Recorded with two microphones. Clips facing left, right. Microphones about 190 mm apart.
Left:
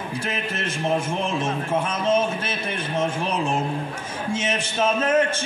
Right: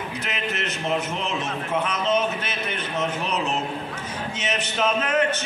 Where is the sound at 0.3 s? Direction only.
30° left (ahead or behind).